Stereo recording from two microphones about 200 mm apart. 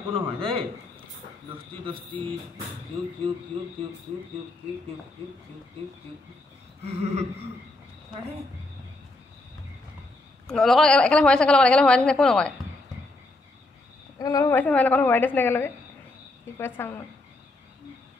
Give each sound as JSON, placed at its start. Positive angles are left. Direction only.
{"t": 0.1, "sound": "speech", "side_deg": -25}
{"t": 1.9, "sound": "speech", "side_deg": -25}
{"t": 6.8, "sound": "a sound", "side_deg": -30}
{"t": 10.4, "sound": "a woman's voice", "side_deg": 0}
{"t": 14.1, "sound": "a woman's voice", "side_deg": 15}